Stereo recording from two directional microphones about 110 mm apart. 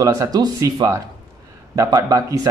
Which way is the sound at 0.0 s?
35° right (ahead or behind).